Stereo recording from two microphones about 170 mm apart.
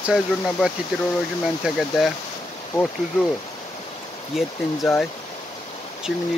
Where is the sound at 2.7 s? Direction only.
15° left (ahead or behind).